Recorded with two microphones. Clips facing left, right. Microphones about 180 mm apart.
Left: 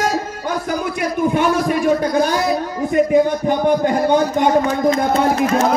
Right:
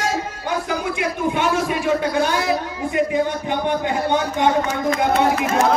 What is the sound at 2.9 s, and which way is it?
A man's voice, 45° left (ahead or behind).